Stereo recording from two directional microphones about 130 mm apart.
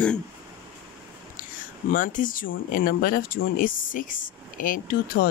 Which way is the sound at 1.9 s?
90° left.